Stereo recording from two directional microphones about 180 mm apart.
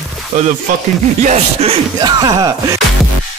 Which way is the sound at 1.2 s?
35° right (ahead or behind).